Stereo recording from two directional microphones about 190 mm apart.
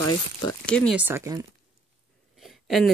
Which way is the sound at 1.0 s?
10° right (ahead or behind).